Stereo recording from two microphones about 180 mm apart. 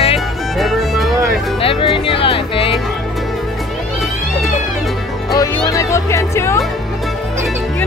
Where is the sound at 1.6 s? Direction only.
30° left (ahead or behind).